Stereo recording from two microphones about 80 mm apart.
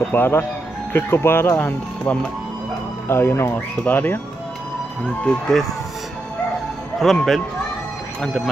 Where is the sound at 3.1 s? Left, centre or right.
Left.